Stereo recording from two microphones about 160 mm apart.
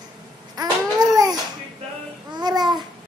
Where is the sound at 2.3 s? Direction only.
25° right (ahead or behind).